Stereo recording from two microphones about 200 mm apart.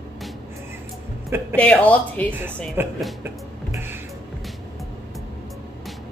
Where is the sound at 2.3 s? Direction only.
10° right (ahead or behind).